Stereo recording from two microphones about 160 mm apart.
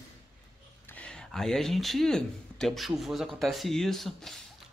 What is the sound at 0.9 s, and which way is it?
Speech, 5° left (ahead or behind).